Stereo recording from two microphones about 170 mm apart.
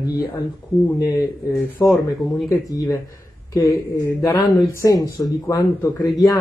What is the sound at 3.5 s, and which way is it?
Speech, 20° left (ahead or behind).